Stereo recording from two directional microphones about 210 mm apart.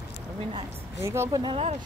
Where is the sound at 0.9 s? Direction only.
10° right (ahead or behind).